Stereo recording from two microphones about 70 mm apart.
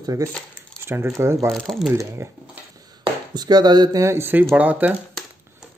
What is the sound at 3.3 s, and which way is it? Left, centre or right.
Chopping, right.